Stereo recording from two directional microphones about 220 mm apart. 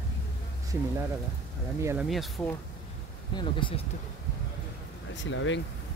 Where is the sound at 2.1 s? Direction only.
Centre (ahead or behind).